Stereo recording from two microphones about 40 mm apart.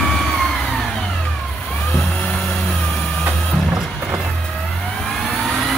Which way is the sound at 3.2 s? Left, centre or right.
Centre.